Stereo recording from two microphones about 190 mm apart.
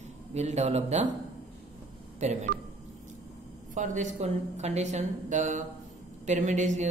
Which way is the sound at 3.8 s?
40° right (ahead or behind).